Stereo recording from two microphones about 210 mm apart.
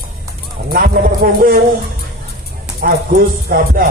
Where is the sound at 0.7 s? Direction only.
45° right (ahead or behind).